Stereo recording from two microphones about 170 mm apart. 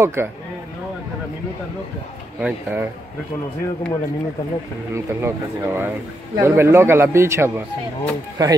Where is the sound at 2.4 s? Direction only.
10° right (ahead or behind).